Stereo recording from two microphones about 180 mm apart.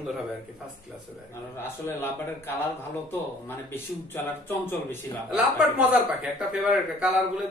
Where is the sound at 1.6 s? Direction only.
15° left (ahead or behind).